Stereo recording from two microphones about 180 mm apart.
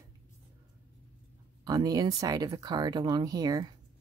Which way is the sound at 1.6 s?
20° right (ahead or behind).